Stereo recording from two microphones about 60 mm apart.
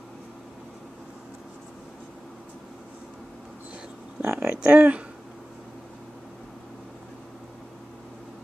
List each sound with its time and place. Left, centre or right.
4.2 s speech: right
4.5 s speech: right